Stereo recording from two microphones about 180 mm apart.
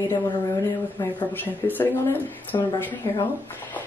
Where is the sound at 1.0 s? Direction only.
10° left (ahead or behind).